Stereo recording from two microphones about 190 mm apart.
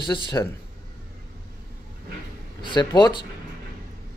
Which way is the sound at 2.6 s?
25° left (ahead or behind).